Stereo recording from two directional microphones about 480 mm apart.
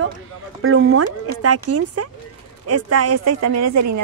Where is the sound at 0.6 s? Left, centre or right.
Right.